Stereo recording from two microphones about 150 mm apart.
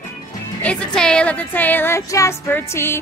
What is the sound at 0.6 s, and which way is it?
Music, 10° left (ahead or behind).